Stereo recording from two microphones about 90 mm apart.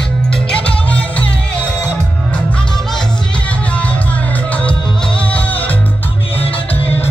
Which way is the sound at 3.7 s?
15° left (ahead or behind).